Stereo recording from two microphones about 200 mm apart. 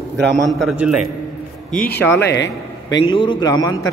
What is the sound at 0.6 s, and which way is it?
Speech, 5° right (ahead or behind).